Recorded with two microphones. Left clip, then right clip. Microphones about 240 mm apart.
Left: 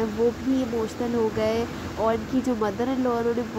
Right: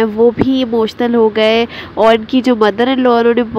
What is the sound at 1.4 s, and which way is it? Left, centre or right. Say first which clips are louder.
Speech: right 13 dB; right.